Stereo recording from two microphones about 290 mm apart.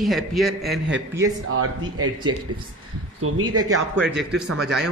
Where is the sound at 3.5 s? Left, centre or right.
Right.